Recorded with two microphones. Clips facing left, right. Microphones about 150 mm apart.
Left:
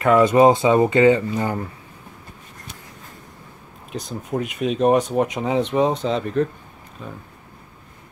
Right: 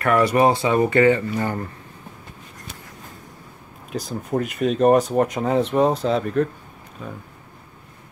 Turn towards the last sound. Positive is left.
turn(degrees=-5)  # may be behind; listen again after turning